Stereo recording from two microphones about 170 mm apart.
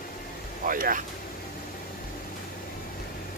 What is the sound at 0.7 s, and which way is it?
Vehicle, 55° right (ahead or behind).